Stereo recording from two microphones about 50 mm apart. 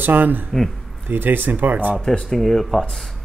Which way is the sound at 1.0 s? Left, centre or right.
Right.